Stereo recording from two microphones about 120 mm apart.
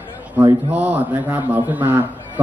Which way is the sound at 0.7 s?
15° right (ahead or behind).